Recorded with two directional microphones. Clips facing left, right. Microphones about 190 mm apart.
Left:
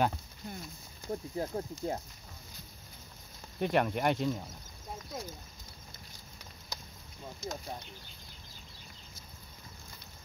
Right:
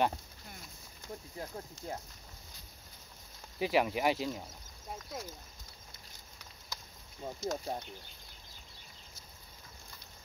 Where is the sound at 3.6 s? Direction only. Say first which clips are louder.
Left 1 dB; 5° right (ahead or behind).